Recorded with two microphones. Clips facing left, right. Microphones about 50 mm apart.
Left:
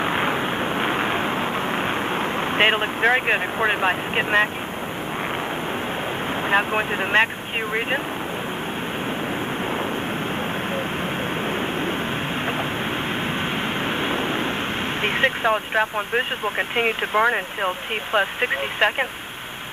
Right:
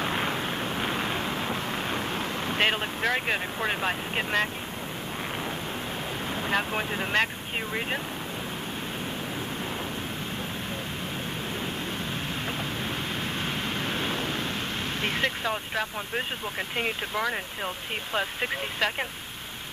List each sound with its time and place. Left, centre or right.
0.0 s vehicle: left
6.4 s speech: left
13.8 s vehicle: left
15.0 s speech: left